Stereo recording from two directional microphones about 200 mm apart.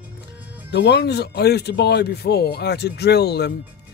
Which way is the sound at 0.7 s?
60° left (ahead or behind).